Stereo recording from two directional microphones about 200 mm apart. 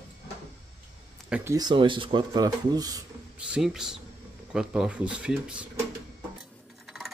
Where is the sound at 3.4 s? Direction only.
5° right (ahead or behind).